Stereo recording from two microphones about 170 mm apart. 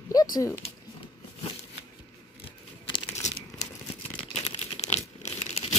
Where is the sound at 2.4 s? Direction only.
35° left (ahead or behind).